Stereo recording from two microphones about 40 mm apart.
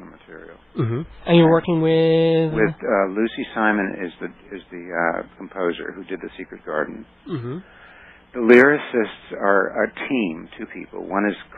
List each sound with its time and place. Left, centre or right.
0.4 s a man's voice: centre
4.7 s speech: right
5.6 s a man's voice: centre
6.1 s a man's voice: centre
10.6 s speech: right
11.1 s a man's voice: centre